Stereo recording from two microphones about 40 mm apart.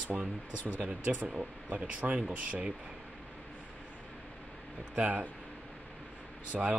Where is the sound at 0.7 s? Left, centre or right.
Right.